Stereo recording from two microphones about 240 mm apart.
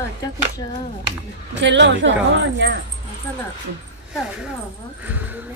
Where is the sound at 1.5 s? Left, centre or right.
Right.